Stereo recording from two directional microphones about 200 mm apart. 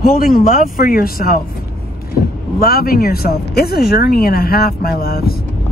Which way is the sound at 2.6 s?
50° left (ahead or behind).